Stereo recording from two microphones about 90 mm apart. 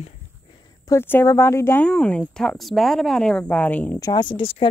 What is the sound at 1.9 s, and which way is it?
Speech, 15° left (ahead or behind).